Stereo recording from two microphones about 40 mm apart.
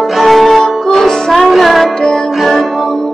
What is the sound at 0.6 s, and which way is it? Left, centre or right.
Music, centre.